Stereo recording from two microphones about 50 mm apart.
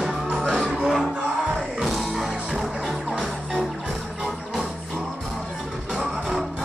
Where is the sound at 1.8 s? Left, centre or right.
Centre.